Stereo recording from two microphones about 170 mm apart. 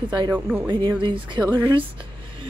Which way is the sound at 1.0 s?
30° right (ahead or behind).